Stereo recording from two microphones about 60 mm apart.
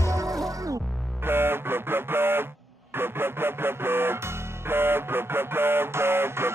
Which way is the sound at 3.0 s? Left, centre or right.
Right.